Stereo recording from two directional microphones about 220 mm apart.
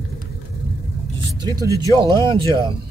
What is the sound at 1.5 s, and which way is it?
Speech, 15° right (ahead or behind).